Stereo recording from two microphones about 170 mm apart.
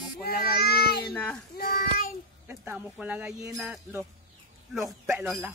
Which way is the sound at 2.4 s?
10° right (ahead or behind).